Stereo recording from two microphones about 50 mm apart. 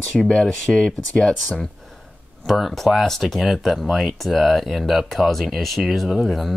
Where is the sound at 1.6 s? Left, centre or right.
Centre.